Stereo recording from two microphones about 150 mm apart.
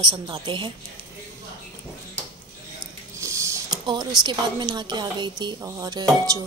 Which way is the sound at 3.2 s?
20° right (ahead or behind).